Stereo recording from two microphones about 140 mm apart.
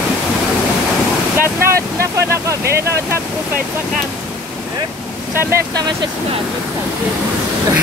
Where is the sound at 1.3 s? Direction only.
20° right (ahead or behind).